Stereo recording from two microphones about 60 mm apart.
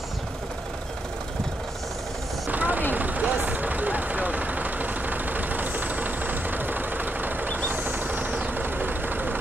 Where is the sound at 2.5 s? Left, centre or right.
Right.